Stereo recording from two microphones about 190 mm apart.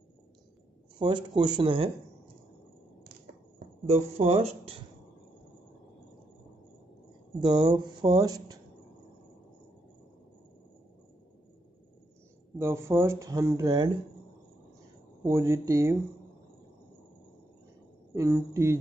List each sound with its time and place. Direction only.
0.9 s speech: 25° right (ahead or behind)
3.5 s speech: 35° right (ahead or behind)
7.3 s speech: 20° right (ahead or behind)
12.5 s speech: 15° right (ahead or behind)
15.2 s speech: 15° right (ahead or behind)
18.1 s speech: 15° right (ahead or behind)